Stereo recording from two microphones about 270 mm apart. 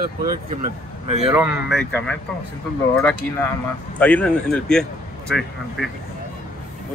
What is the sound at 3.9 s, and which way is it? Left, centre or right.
Speech, centre.